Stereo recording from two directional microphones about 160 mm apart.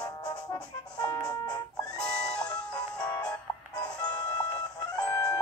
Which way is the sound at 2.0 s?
5° left (ahead or behind).